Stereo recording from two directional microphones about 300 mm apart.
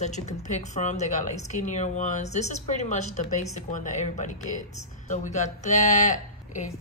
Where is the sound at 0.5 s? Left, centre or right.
Left.